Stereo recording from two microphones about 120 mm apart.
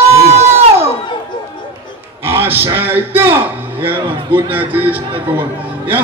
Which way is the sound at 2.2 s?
20° right (ahead or behind).